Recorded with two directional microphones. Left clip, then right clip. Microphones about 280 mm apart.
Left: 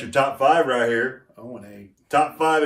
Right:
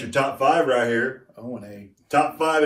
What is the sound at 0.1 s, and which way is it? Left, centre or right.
Speech, centre.